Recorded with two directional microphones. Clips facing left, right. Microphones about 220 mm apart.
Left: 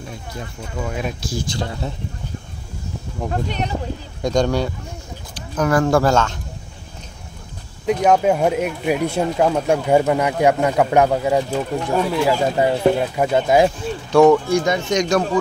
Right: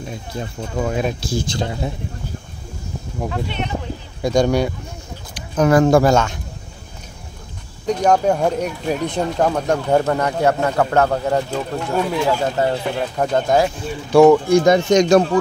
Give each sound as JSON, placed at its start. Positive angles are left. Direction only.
{"t": 0.7, "sound": "speech", "side_deg": -40}
{"t": 3.3, "sound": "speech", "side_deg": 40}
{"t": 4.2, "sound": "speech", "side_deg": -10}
{"t": 7.8, "sound": "speech", "side_deg": 5}
{"t": 14.1, "sound": "speech", "side_deg": -10}
{"t": 14.6, "sound": "speech", "side_deg": -35}